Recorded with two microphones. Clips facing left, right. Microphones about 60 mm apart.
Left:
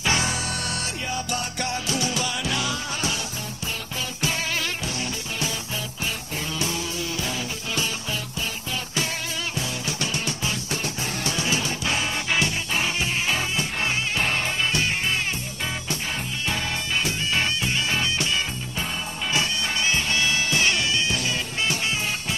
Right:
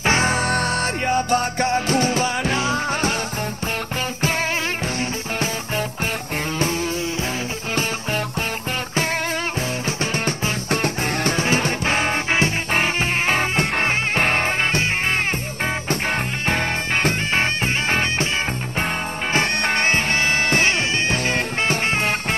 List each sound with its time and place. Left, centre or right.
0.0 s music: right
6.6 s music: right
9.6 s music: right
19.3 s music: right